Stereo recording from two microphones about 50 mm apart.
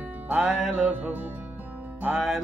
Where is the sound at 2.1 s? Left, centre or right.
Centre.